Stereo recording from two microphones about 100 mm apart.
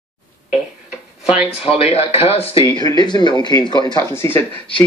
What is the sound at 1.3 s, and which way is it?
Speech, 10° right (ahead or behind).